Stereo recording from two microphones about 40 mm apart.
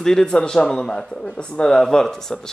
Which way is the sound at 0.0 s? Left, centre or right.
Centre.